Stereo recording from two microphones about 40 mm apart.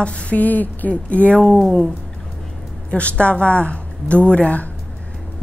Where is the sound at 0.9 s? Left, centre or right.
Left.